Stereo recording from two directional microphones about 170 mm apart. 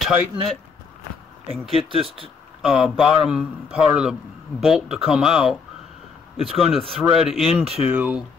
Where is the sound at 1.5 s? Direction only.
30° right (ahead or behind).